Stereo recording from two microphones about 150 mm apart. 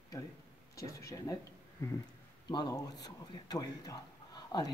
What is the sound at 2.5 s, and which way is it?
A man's voice, 25° left (ahead or behind).